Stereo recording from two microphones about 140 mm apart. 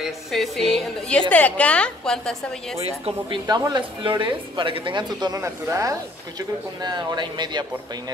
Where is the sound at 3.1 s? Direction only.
35° right (ahead or behind).